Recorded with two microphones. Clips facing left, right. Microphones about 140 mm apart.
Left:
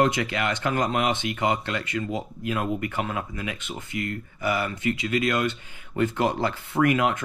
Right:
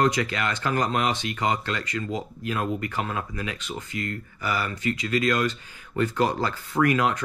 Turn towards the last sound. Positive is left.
turn(degrees=20)  # may be behind; listen again after turning